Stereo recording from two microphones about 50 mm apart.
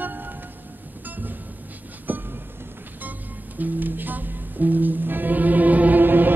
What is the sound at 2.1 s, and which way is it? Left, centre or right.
Music, right.